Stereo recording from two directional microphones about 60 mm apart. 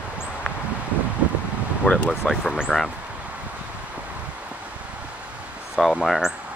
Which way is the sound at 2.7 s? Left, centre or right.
Centre.